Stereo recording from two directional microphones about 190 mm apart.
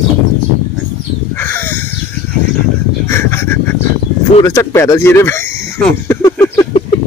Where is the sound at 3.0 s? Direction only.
15° left (ahead or behind).